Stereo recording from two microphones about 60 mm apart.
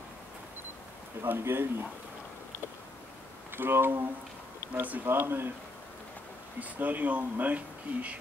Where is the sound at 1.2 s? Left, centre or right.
Right.